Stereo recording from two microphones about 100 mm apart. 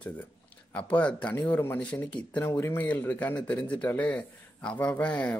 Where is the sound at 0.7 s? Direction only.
15° left (ahead or behind).